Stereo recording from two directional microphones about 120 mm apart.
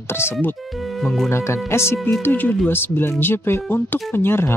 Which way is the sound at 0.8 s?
Centre (ahead or behind).